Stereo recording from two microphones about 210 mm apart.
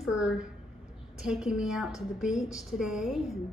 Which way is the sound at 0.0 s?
5° right (ahead or behind).